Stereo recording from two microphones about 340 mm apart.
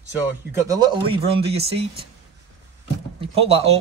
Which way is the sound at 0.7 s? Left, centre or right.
Centre.